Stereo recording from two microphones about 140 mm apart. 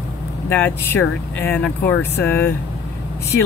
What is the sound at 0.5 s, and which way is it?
Speech, 15° left (ahead or behind).